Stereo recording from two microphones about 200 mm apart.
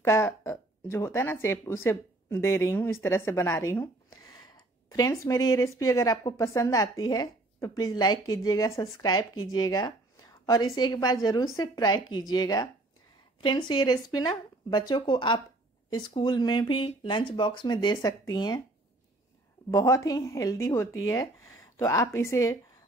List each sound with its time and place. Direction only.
0.0 s a woman's voice: 15° left (ahead or behind)
19.7 s speech: 15° left (ahead or behind)